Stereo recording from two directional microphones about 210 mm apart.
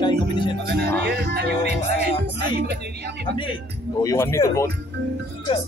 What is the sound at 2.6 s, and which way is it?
Speech, 50° right (ahead or behind).